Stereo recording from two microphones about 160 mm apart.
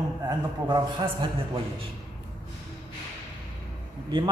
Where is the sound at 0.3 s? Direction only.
25° right (ahead or behind).